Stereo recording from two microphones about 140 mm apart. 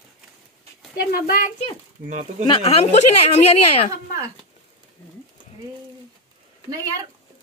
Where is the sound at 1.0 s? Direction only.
90° left.